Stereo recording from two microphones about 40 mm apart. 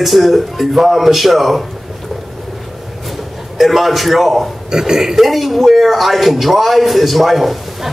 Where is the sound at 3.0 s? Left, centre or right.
Centre.